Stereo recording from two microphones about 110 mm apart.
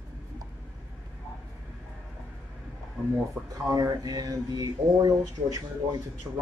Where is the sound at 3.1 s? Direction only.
30° right (ahead or behind).